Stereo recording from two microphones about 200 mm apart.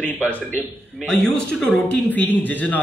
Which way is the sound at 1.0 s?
5° left (ahead or behind).